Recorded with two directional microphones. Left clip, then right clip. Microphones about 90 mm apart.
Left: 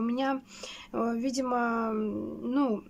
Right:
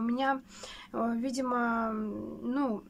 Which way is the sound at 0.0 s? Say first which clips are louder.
Even; 20° left (ahead or behind).